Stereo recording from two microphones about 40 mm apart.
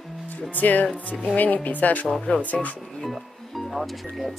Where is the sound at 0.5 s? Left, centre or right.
Left.